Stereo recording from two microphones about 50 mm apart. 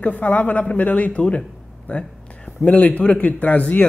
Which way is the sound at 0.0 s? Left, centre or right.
Left.